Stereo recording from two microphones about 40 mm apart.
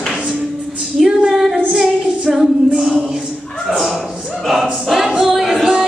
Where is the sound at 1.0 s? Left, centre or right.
Centre.